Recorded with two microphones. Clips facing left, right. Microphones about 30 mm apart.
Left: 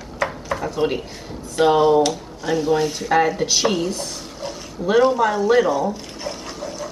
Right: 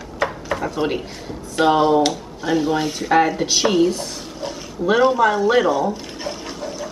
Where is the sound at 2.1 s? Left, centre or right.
Centre.